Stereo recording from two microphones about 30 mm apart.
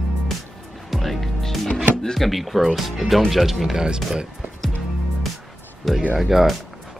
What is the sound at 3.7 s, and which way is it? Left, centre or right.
Speech, right.